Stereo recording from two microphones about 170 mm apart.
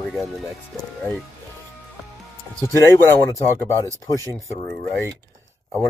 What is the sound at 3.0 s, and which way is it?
Speech, 15° left (ahead or behind).